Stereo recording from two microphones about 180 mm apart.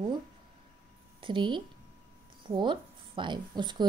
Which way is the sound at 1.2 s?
25° right (ahead or behind).